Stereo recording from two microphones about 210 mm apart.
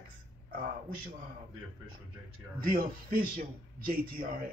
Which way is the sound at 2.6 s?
40° right (ahead or behind).